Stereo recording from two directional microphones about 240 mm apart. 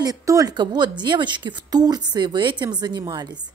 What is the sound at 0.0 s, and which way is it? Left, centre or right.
A woman's voice, centre.